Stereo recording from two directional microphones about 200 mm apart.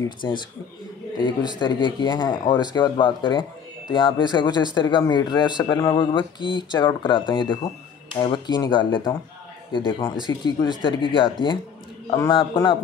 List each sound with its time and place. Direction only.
0.0 s speech: 20° left (ahead or behind)